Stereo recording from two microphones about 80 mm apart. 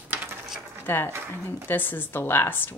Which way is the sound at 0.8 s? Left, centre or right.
Left.